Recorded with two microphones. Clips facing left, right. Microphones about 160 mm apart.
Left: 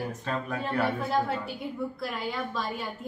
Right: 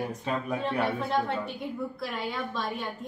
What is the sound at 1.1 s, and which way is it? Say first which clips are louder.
A woman's voice: even; 5° left (ahead or behind).